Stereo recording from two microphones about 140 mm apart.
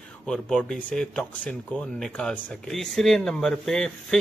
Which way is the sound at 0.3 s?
5° left (ahead or behind).